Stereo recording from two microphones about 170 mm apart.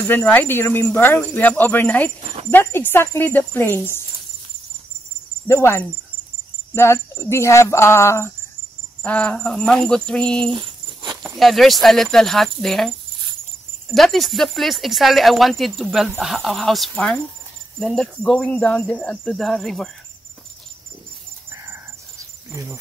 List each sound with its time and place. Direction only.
0.0 s speech: 15° left (ahead or behind)
5.5 s speech: 15° left (ahead or behind)
10.5 s dog: 25° right (ahead or behind)
11.2 s speech: centre (ahead or behind)
13.9 s speech: centre (ahead or behind)
21.5 s wheeze: 15° right (ahead or behind)
22.5 s speech: 15° right (ahead or behind)